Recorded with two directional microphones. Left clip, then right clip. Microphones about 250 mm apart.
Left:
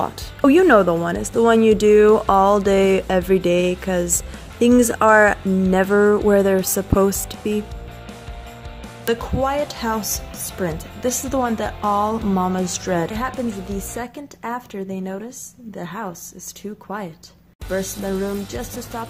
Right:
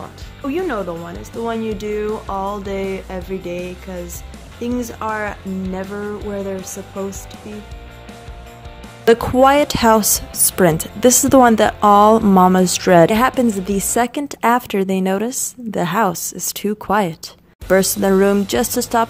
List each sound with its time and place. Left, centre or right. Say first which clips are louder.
0.0 s speech: left 10 dB; left
9.0 s a woman's voice: right 10 dB; right